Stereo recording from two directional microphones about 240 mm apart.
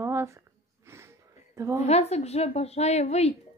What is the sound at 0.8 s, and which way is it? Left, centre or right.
Sniff, centre.